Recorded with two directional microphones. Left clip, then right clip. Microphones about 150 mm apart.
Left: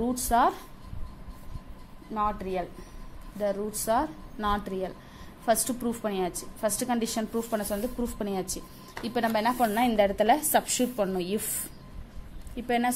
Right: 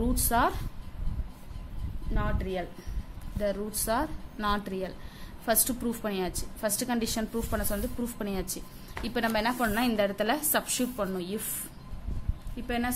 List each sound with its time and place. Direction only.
0.0 s a woman's voice: centre (ahead or behind)
2.1 s a woman's voice: centre (ahead or behind); by 11.5 s 20° left (ahead or behind)
12.6 s a woman's voice: 20° left (ahead or behind)